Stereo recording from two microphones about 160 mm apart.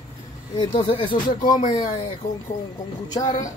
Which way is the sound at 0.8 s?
30° left (ahead or behind).